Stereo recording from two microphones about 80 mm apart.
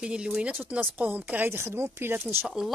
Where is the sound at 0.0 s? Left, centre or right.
Centre.